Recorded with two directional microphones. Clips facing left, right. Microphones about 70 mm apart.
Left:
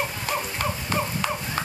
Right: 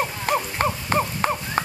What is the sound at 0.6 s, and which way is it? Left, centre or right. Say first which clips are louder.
Horse: right 4 dB; right.